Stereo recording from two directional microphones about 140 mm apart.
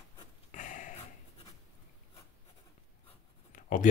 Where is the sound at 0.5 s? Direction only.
70° left (ahead or behind).